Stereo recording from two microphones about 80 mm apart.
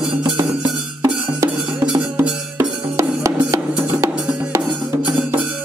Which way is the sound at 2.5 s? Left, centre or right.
Right.